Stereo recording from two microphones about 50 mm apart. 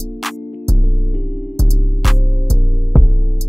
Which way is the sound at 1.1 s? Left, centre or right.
Centre.